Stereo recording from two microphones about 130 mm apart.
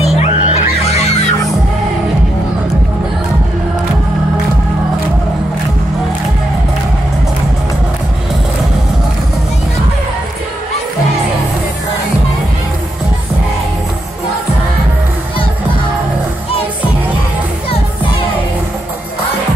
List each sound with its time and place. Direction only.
0.0 s music: 55° left (ahead or behind)